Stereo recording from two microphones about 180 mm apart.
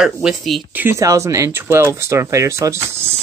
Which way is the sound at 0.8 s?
15° right (ahead or behind).